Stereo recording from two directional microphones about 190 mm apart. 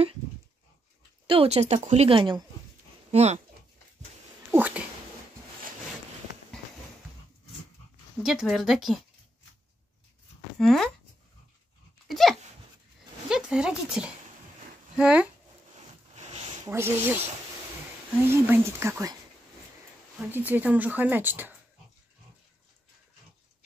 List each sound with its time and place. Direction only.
1.2 s speech: 30° right (ahead or behind)
4.5 s speech: 10° right (ahead or behind)
8.2 s speech: centre (ahead or behind)
10.6 s speech: centre (ahead or behind)
12.1 s dog: centre (ahead or behind)
13.3 s speech: 5° right (ahead or behind)
15.7 s a sound: 35° right (ahead or behind)
16.6 s speech: 10° right (ahead or behind)
20.2 s speech: 10° right (ahead or behind)